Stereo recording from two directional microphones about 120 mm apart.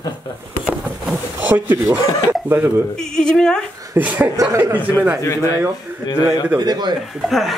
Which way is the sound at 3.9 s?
15° right (ahead or behind).